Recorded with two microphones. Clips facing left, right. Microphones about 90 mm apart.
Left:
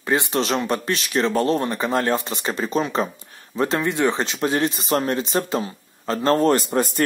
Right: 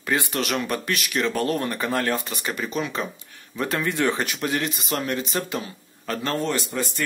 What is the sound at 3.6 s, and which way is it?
Speech, 25° left (ahead or behind).